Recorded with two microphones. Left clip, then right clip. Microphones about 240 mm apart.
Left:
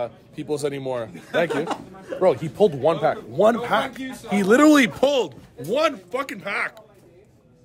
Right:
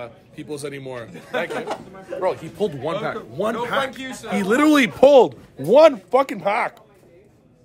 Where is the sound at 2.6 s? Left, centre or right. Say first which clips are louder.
Left 5 dB; centre.